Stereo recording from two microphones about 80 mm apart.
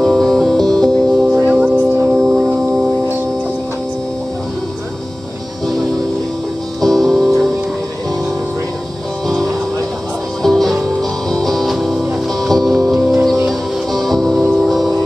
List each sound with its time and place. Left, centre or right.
0.0 s music: centre
1.5 s music: centre
2.1 s a sound: right
2.4 s music: centre
6.8 s music: centre
10.4 s music: centre